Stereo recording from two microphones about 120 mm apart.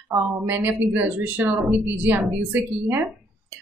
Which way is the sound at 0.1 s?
15° right (ahead or behind).